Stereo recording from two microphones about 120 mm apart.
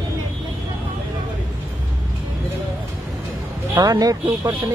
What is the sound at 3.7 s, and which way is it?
Speech, 30° right (ahead or behind).